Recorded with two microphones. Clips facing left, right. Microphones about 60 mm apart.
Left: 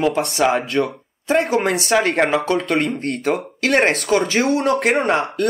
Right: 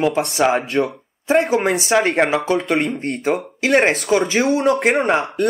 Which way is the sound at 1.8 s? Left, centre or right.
Centre.